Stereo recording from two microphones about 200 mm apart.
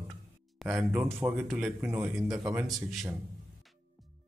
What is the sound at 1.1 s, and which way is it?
Speech, 10° right (ahead or behind).